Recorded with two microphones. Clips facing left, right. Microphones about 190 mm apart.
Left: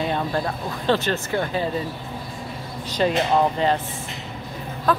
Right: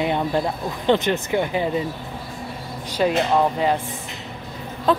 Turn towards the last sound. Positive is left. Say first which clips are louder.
# right 2 dB
turn(degrees=-25)  # may be behind; listen again after turning